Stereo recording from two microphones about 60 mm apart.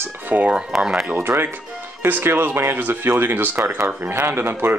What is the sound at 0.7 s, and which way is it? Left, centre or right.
Speech, centre.